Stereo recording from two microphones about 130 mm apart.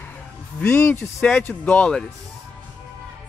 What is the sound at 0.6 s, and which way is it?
Speech, 15° left (ahead or behind).